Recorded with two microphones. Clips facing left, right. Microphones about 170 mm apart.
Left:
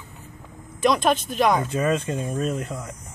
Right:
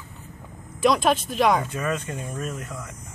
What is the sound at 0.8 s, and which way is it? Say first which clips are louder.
Speech: even; centre (ahead or behind).